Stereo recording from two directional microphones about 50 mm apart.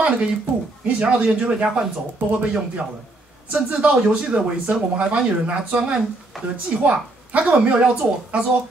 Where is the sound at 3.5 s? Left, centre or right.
Right.